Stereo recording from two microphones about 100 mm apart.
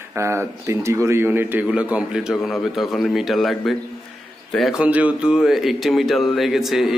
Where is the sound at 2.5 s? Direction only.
Centre (ahead or behind).